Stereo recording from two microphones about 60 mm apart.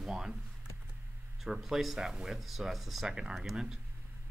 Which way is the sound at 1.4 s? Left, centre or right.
Centre.